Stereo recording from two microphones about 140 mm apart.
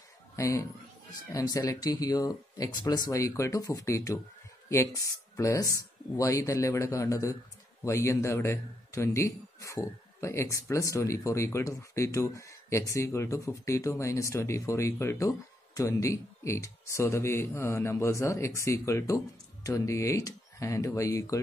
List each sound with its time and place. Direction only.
0.4 s a man's voice: 20° left (ahead or behind)